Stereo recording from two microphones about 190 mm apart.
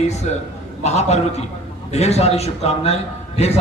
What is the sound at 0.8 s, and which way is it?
A man's voice, 35° left (ahead or behind).